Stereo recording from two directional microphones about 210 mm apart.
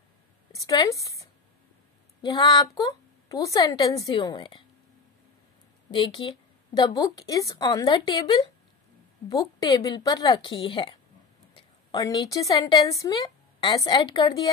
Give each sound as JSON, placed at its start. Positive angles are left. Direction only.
{"t": 0.5, "sound": "a woman's voice", "side_deg": 15}
{"t": 5.9, "sound": "a woman's voice", "side_deg": 20}